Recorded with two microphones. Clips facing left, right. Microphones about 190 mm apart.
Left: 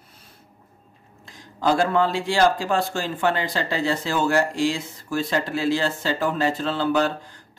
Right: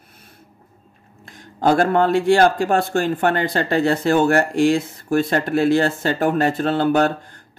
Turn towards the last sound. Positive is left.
turn(degrees=-55)  # may be behind; listen again after turning